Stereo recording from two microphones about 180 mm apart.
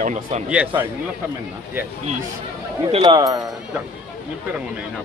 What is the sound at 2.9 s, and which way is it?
Speech, 25° right (ahead or behind).